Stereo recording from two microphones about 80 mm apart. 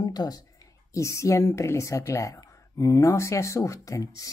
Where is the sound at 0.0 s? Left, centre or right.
Left.